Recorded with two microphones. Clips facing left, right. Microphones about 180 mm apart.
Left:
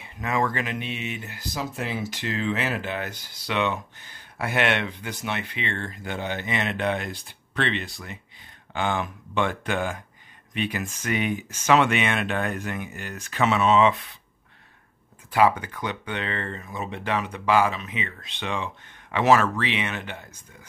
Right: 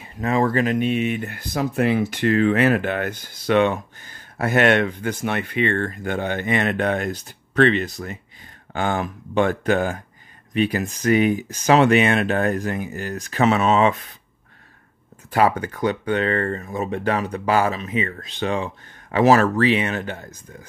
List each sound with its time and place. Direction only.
0.0 s speech: 35° right (ahead or behind)
15.3 s speech: 40° right (ahead or behind)